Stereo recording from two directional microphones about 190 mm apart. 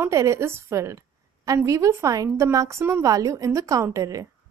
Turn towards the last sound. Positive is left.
turn(degrees=-15)  # may be behind; listen again after turning